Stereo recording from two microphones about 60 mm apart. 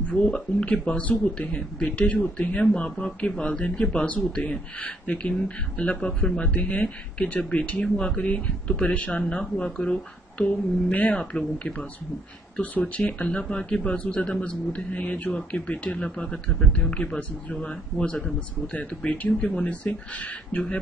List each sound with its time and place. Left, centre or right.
0.1 s a man's voice: centre
9.2 s a man's voice: centre
19.3 s a man's voice: centre
19.7 s speech: left